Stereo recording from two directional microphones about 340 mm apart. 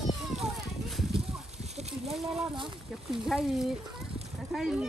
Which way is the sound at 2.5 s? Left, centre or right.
Centre.